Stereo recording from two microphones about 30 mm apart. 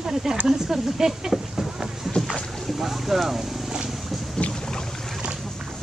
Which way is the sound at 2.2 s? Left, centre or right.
Centre.